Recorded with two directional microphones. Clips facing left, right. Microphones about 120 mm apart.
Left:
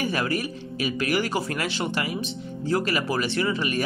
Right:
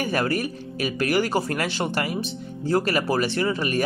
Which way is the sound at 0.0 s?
45° right (ahead or behind).